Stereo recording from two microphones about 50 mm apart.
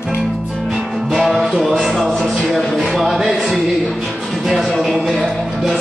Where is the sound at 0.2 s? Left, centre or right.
Centre.